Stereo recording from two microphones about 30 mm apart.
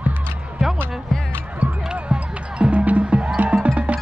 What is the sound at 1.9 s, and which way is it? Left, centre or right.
Music, right.